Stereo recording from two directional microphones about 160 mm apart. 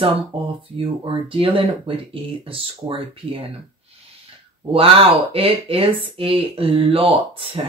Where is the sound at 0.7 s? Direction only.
35° right (ahead or behind).